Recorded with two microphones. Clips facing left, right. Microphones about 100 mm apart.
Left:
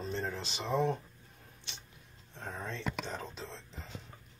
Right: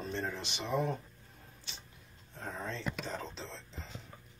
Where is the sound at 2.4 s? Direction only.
5° right (ahead or behind).